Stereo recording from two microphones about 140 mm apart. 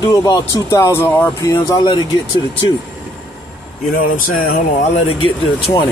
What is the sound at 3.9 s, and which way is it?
Speech, 75° left (ahead or behind).